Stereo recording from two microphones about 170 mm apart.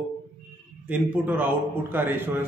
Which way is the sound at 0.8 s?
10° right (ahead or behind).